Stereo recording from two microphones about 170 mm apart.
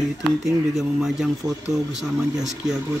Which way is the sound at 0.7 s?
5° right (ahead or behind).